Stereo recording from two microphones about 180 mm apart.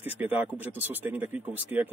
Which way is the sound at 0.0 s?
10° right (ahead or behind).